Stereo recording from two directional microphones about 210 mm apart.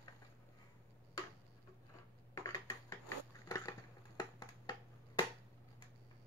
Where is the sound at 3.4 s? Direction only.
15° left (ahead or behind).